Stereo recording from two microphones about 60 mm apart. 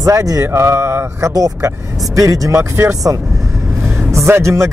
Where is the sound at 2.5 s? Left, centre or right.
Right.